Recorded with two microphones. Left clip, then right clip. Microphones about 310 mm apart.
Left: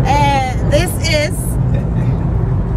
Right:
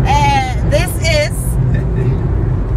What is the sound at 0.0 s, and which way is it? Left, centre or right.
Vehicle, centre.